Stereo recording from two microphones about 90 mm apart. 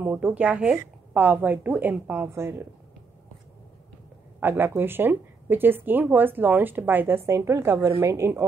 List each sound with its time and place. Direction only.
0.0 s a woman's voice: 20° right (ahead or behind)
2.2 s speech: 30° right (ahead or behind)
4.4 s a woman's voice: 25° right (ahead or behind)